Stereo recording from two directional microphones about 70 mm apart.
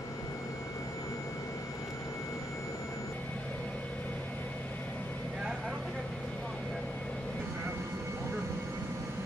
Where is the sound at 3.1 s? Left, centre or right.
Centre.